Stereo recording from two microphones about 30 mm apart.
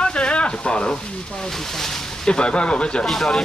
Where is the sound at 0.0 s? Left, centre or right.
Left.